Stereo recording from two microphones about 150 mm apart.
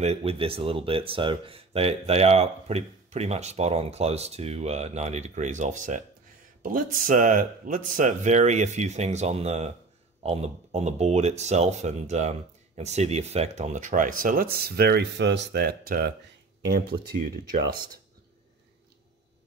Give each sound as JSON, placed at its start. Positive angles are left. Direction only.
{"t": 0.0, "sound": "speech", "side_deg": -45}